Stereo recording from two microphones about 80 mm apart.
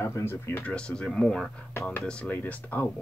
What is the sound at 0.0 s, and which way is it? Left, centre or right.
Speech, left.